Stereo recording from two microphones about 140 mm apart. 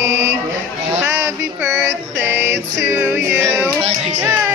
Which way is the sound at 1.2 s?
20° right (ahead or behind).